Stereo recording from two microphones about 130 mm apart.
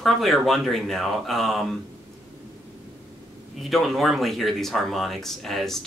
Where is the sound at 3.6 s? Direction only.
Centre (ahead or behind).